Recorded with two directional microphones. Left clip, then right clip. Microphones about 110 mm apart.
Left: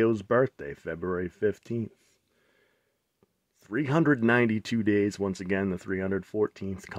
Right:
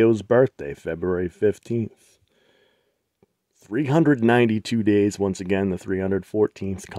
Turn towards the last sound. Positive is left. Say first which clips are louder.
# right 7 dB
turn(degrees=-65)  # may be behind; listen again after turning